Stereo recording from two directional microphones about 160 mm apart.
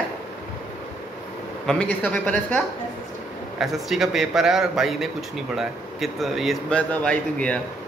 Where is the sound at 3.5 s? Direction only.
Centre (ahead or behind).